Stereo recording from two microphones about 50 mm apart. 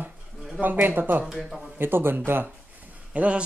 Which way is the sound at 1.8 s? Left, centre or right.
Right.